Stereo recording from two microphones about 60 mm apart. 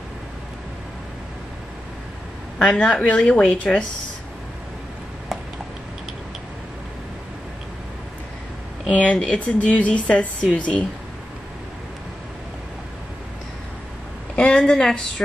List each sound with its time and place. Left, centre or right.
2.6 s a woman's voice: centre
8.9 s speech: left
14.3 s a woman's voice: centre